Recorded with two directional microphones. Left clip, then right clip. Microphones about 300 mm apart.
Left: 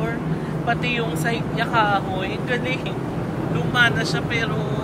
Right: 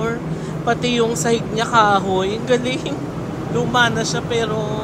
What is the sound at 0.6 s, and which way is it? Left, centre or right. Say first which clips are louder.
Speech: right 5 dB; centre.